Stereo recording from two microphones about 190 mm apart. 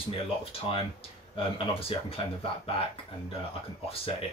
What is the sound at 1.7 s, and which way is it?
Speech, 30° left (ahead or behind).